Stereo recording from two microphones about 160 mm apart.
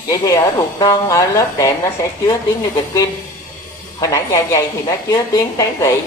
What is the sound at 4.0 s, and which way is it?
A woman's voice, 20° left (ahead or behind).